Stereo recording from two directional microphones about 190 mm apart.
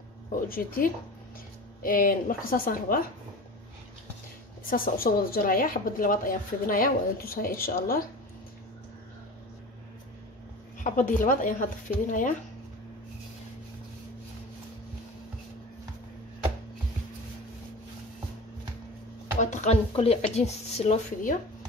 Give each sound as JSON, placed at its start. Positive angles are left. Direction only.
{"t": 0.5, "sound": "speech", "side_deg": 50}
{"t": 4.6, "sound": "speech", "side_deg": 50}
{"t": 10.8, "sound": "speech", "side_deg": 45}
{"t": 19.4, "sound": "a woman's voice", "side_deg": 40}